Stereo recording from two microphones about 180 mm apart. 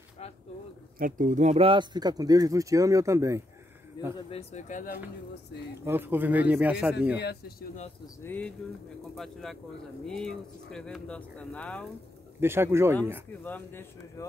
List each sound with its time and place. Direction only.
0.2 s a sound: 35° left (ahead or behind)
0.9 s speech: 50° right (ahead or behind); by 3.4 s 15° right (ahead or behind)
4.3 s speech: 35° left (ahead or behind)
5.9 s speech: 10° right (ahead or behind)
7.2 s speech: 65° left (ahead or behind)
8.2 s speech: 10° left (ahead or behind)
12.4 s speech: 15° right (ahead or behind)
13.3 s speech: 10° left (ahead or behind)